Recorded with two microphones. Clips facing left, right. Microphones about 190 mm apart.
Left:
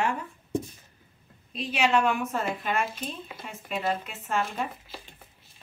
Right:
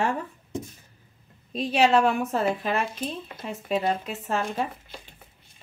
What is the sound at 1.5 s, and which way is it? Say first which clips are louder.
Speech: right 4 dB; 35° right (ahead or behind).